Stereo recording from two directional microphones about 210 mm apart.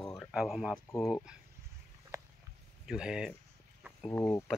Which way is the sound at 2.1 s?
15° right (ahead or behind).